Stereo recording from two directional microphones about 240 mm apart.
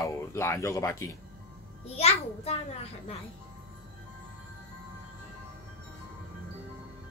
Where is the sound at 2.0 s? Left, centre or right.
Left.